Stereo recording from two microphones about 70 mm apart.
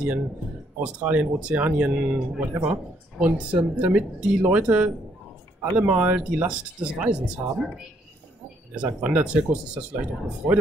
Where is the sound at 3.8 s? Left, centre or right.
Right.